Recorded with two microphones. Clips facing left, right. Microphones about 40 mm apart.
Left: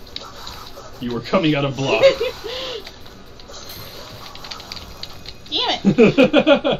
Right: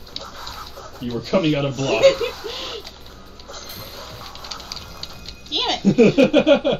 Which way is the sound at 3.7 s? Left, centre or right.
Centre.